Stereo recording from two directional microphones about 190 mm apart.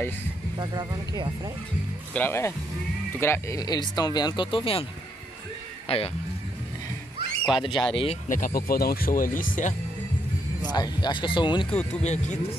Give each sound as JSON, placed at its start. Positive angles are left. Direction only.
{"t": 0.6, "sound": "speech", "side_deg": -20}
{"t": 2.1, "sound": "speech", "side_deg": 10}
{"t": 5.9, "sound": "speech", "side_deg": 30}
{"t": 7.4, "sound": "speech", "side_deg": 25}
{"t": 8.3, "sound": "speech", "side_deg": 45}
{"t": 10.7, "sound": "speech", "side_deg": 20}
{"t": 11.9, "sound": "speech", "side_deg": 35}